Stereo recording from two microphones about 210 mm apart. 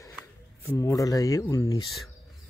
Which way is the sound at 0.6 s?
15° left (ahead or behind).